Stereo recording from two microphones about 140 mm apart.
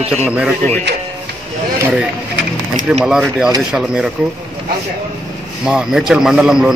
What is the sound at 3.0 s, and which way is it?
A man's voice, 5° right (ahead or behind).